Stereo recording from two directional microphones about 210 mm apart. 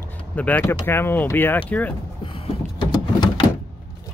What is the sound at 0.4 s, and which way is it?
Speech, 10° left (ahead or behind).